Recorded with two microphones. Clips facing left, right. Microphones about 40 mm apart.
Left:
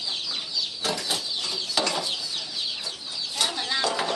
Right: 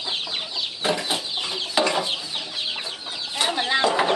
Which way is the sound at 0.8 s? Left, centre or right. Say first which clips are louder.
Right 6 dB; right.